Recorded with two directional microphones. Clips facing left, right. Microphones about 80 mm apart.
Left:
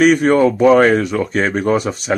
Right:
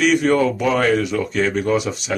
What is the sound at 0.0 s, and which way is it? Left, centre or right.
Speech, left.